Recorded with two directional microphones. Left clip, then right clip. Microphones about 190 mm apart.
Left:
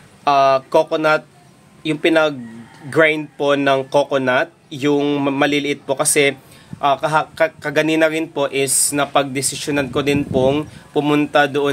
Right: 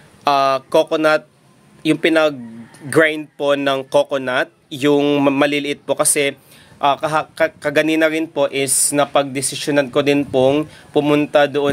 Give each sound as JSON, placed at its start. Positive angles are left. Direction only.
{"t": 0.2, "sound": "a man's voice", "side_deg": -35}